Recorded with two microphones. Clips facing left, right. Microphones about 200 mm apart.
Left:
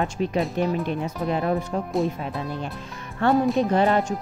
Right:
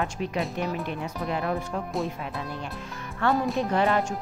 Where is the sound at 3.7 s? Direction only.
35° left (ahead or behind).